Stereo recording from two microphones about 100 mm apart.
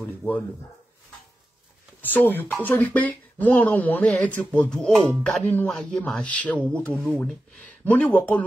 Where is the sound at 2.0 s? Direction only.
20° left (ahead or behind).